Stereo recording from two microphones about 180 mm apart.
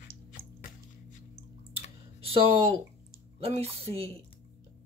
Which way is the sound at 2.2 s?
30° right (ahead or behind).